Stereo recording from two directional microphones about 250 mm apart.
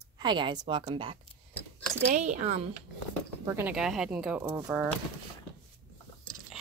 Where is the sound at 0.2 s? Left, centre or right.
Centre.